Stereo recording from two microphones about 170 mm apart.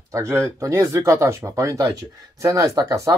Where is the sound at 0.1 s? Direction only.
15° right (ahead or behind).